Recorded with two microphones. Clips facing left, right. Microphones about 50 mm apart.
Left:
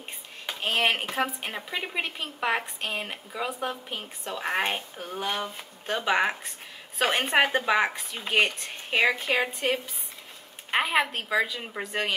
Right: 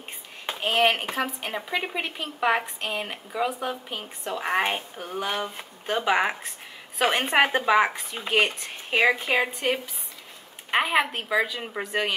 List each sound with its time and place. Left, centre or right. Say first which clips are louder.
0.6 s speech: right 4 dB; centre
1.1 s a woman's voice: even; centre
1.8 s a woman's voice: right 2 dB; centre